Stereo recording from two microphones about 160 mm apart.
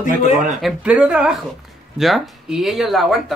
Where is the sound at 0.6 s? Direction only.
5° right (ahead or behind).